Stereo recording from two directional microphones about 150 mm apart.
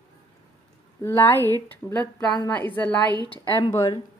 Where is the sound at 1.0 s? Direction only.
15° left (ahead or behind).